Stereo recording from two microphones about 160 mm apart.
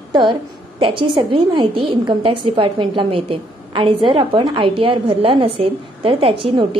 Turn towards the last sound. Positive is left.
turn(degrees=-35)  # may be behind; listen again after turning